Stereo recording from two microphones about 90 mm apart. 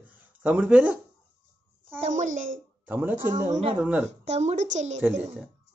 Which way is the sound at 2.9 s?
20° right (ahead or behind).